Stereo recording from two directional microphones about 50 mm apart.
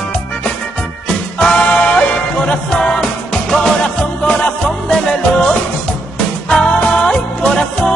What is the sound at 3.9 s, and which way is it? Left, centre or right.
Music, left.